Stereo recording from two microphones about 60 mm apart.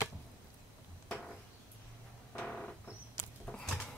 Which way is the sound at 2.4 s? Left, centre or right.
Centre.